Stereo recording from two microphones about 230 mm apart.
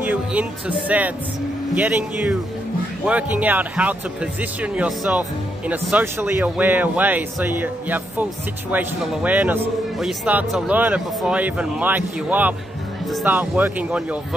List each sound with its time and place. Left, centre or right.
0.0 s a man's voice: centre